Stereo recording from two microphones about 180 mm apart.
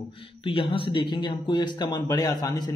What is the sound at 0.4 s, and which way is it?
A man's voice, 30° left (ahead or behind).